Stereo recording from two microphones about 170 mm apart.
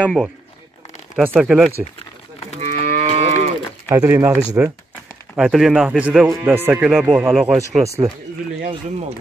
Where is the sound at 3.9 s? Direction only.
20° right (ahead or behind).